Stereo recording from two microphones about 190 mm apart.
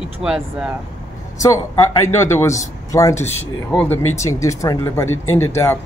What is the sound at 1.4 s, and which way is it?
Speech, 15° left (ahead or behind).